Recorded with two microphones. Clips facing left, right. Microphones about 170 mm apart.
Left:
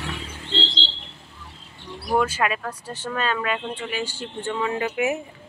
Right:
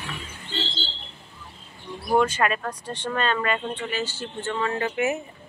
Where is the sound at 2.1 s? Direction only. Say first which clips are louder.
Right 1 dB; 5° left (ahead or behind).